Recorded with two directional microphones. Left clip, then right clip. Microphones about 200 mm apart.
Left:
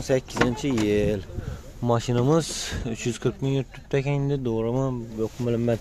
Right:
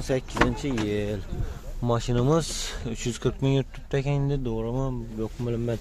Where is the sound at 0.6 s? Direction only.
30° left (ahead or behind).